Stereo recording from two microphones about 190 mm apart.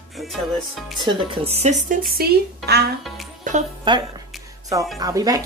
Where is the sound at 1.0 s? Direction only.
30° right (ahead or behind).